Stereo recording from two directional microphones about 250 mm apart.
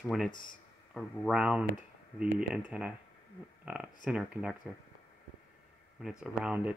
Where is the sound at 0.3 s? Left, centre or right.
Left.